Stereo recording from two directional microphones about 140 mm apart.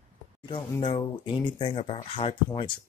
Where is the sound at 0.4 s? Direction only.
40° left (ahead or behind).